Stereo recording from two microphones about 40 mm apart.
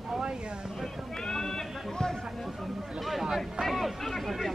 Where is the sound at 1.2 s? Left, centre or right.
Centre.